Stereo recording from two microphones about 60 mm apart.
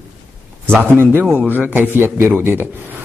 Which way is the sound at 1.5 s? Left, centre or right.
Right.